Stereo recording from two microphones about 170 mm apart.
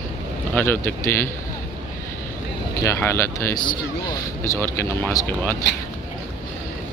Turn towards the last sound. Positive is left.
turn(degrees=15)  # may be behind; listen again after turning